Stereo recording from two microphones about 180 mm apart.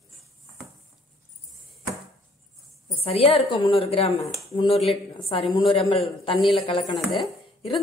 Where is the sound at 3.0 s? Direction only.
35° left (ahead or behind).